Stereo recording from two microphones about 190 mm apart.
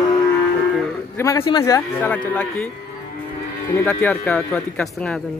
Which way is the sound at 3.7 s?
10° left (ahead or behind).